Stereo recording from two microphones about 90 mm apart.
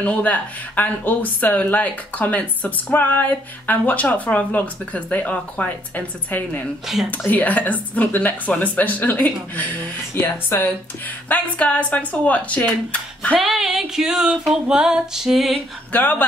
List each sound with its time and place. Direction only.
0.0 s speech: 15° left (ahead or behind)
13.4 s music: 5° right (ahead or behind)
15.9 s speech: 20° left (ahead or behind)